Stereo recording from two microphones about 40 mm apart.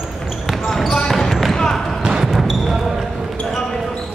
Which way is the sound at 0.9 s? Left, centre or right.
Centre.